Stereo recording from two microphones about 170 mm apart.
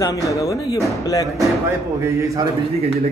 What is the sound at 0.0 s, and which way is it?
A man's voice, 20° left (ahead or behind).